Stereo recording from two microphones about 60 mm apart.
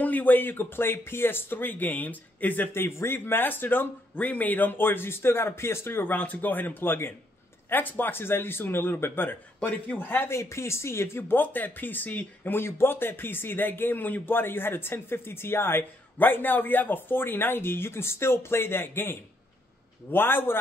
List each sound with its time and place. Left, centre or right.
0.0 s speech: left
6.0 s speech: left
9.6 s a man's voice: left
9.9 s speech: left
10.3 s speech: left